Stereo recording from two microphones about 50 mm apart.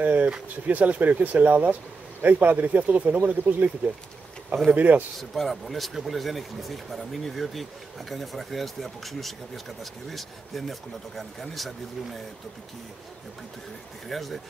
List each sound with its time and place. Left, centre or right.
0.0 s speech: right
5.3 s speech: centre
14.0 s speech: centre